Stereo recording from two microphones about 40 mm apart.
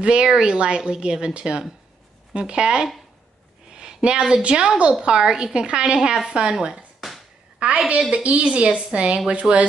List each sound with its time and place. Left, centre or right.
0.0 s a woman's voice: right
7.6 s a woman's voice: right